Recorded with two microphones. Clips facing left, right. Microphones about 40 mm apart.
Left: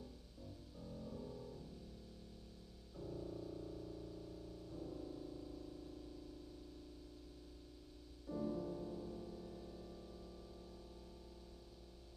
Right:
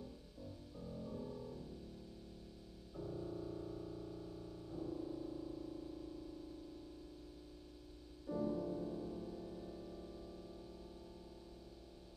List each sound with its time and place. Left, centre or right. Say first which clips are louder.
0.7 s music: right 3 dB; centre
3.0 s keyboard: right 3 dB; centre
8.3 s music: right 3 dB; centre